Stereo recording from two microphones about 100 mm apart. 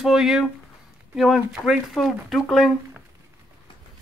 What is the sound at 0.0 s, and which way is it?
Speech, 5° right (ahead or behind).